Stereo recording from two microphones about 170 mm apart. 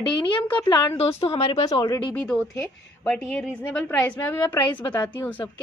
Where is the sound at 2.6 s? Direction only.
5° left (ahead or behind).